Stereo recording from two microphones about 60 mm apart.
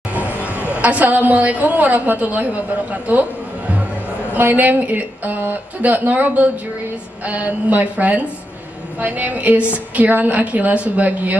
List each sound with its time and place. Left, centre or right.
0.4 s a woman's voice: right